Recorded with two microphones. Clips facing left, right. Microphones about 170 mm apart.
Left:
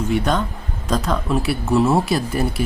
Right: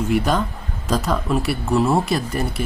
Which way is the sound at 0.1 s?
Centre (ahead or behind).